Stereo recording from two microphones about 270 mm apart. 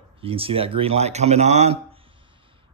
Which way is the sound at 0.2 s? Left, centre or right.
Right.